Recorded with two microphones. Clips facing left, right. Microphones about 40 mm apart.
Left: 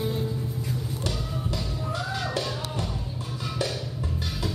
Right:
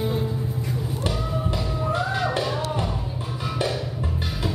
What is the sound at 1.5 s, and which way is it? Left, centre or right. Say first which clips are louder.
Music: right 6 dB; right.